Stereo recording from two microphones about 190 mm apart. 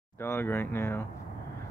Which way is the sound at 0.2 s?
10° left (ahead or behind).